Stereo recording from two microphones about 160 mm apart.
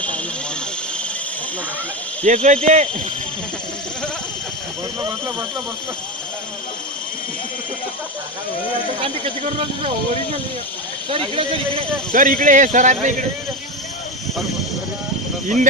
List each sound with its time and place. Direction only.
2.2 s speech: 50° right (ahead or behind)
9.0 s speech: 40° right (ahead or behind)
11.1 s speech: 35° right (ahead or behind)
12.1 s speech: 55° right (ahead or behind)